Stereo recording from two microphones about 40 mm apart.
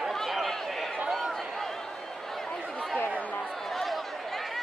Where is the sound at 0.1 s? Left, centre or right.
Centre.